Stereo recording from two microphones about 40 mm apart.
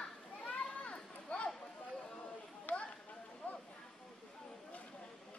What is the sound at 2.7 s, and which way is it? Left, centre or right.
Chatter, left.